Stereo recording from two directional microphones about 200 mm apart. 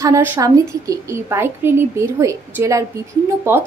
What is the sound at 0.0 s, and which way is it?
A woman's voice, 15° right (ahead or behind).